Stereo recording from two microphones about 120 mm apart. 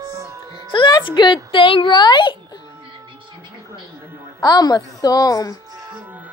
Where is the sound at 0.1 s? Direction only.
25° right (ahead or behind).